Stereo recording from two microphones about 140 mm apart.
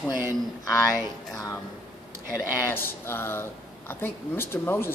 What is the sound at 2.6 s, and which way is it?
Speech, 15° left (ahead or behind).